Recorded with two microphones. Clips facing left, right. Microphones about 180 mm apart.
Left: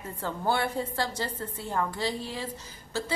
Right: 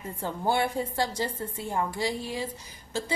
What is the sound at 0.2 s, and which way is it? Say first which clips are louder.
A woman's voice: right 1 dB; 15° right (ahead or behind).